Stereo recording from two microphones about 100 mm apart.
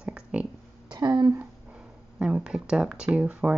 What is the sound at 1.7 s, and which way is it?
Speech, 10° right (ahead or behind).